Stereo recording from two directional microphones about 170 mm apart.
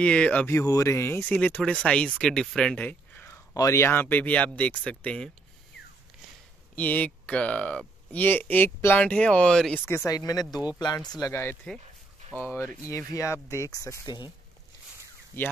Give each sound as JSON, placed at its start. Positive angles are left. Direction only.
{"t": 0.0, "sound": "speech", "side_deg": 5}
{"t": 6.7, "sound": "speech", "side_deg": 10}
{"t": 15.3, "sound": "speech", "side_deg": 15}